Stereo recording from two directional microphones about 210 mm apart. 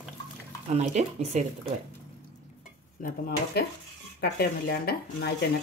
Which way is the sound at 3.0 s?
40° left (ahead or behind).